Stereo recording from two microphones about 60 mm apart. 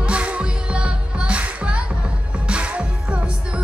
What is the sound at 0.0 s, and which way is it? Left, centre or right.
Music, right.